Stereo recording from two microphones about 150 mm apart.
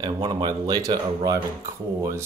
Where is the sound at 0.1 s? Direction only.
30° right (ahead or behind).